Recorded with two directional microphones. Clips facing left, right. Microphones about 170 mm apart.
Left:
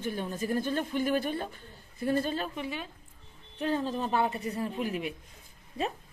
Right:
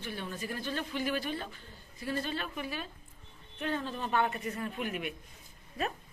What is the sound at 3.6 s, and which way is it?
Speech, 35° left (ahead or behind).